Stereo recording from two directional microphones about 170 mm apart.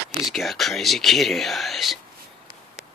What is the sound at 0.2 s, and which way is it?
Speech, centre (ahead or behind).